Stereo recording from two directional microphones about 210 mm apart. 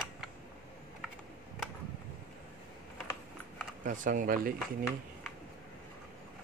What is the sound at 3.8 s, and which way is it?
Speech, 40° right (ahead or behind).